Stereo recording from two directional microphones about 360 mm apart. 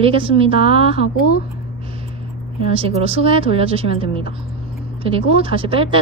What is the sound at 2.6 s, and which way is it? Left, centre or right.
A woman's voice, centre.